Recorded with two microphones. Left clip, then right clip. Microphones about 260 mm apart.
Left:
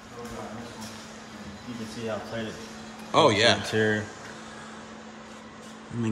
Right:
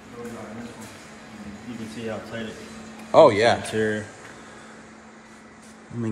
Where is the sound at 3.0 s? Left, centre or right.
Centre.